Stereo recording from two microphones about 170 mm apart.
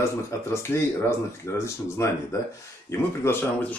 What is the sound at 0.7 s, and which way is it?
Speech, 15° left (ahead or behind).